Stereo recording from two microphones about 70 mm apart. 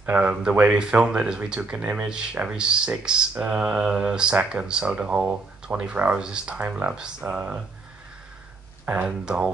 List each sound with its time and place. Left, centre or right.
0.1 s speech: centre
8.8 s speech: centre